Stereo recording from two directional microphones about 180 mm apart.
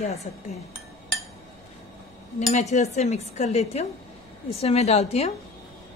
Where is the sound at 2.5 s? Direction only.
40° left (ahead or behind).